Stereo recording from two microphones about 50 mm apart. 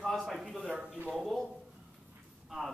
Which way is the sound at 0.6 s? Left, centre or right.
Right.